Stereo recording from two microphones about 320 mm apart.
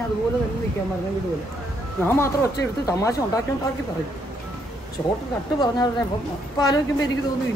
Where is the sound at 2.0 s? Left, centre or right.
Centre.